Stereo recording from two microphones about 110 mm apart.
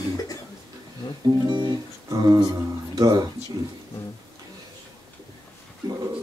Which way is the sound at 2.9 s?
35° right (ahead or behind).